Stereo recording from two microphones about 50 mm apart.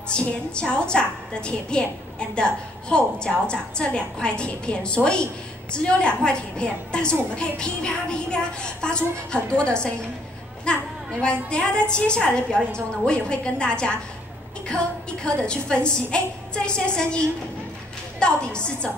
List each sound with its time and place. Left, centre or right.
0.1 s a woman's voice: centre